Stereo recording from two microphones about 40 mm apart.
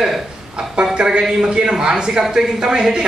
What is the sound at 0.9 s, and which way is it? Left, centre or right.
A man's voice, right.